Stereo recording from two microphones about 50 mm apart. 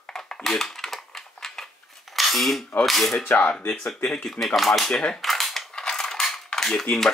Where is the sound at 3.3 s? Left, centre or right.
Left.